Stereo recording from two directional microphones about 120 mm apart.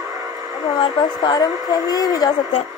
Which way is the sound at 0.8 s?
35° left (ahead or behind).